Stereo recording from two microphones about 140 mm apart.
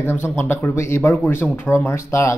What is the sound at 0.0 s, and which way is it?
A man's voice, 15° left (ahead or behind).